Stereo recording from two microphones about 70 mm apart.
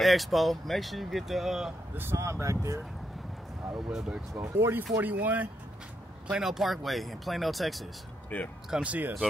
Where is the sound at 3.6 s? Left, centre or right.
Centre.